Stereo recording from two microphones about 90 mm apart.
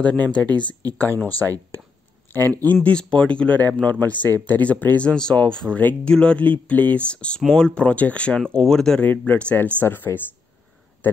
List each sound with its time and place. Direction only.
0.0 s speech: 15° left (ahead or behind)
2.6 s speech: 15° left (ahead or behind)
5.8 s speech: 20° left (ahead or behind)
9.0 s speech: 20° left (ahead or behind)